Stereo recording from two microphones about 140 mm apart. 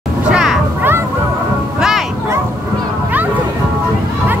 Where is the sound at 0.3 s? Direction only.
5° right (ahead or behind).